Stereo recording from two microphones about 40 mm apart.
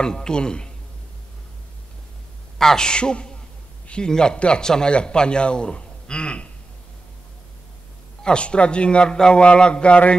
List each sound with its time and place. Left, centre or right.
0.0 s a man's voice: left
2.6 s a man's voice: centre
3.8 s a sound: left
4.1 s a man's voice: centre
8.2 s a man's voice: left